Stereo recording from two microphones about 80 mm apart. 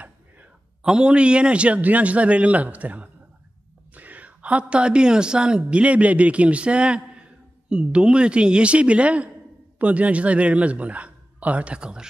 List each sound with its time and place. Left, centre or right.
0.0 s a man's voice: centre